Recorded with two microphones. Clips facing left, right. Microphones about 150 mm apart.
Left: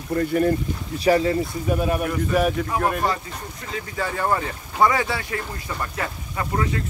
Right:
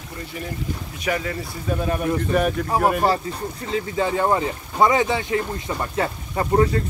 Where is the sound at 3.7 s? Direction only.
20° right (ahead or behind).